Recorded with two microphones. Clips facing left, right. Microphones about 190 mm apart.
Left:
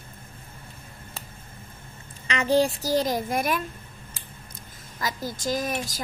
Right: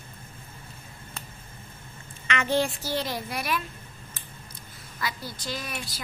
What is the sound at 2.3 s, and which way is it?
A woman's voice, 35° left (ahead or behind).